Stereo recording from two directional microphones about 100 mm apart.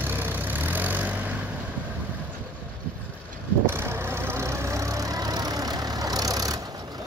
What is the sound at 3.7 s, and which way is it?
Vehicle, 25° right (ahead or behind).